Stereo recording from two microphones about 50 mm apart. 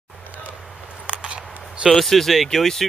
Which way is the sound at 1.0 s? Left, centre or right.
Right.